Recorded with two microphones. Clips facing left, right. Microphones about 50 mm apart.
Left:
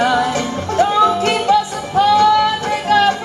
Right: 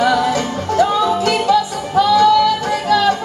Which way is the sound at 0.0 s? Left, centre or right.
Left.